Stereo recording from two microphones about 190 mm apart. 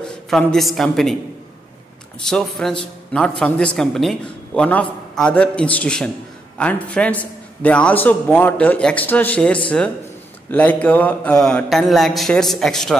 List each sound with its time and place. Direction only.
0.0 s a woman's voice: 5° left (ahead or behind)
2.2 s a man's voice: 5° left (ahead or behind)